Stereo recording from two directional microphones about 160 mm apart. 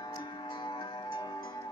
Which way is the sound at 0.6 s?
30° left (ahead or behind).